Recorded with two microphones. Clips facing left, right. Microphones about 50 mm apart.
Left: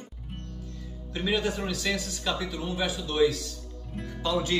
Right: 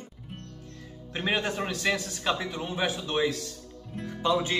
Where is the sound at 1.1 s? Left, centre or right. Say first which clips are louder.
Even; right.